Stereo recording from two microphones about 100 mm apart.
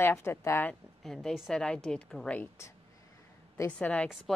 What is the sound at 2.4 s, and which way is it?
Speech, 30° left (ahead or behind).